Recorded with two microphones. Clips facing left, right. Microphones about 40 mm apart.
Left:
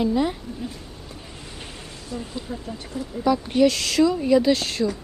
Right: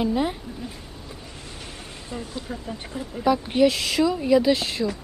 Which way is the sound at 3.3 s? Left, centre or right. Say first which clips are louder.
Even; centre.